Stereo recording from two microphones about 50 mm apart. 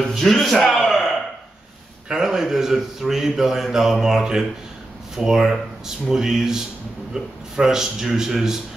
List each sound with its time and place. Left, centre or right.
0.0 s a man's voice: centre
0.7 s a sound: centre
2.0 s a man's voice: centre